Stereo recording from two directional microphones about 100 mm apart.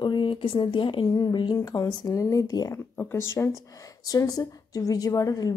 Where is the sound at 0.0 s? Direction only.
50° left (ahead or behind).